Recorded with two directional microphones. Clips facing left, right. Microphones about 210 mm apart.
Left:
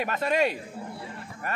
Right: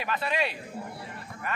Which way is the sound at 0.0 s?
45° left (ahead or behind).